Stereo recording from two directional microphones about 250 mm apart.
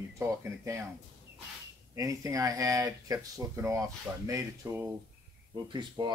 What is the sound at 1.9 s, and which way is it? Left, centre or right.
Speech, centre.